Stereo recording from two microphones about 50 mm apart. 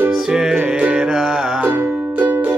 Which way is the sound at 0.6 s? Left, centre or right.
Right.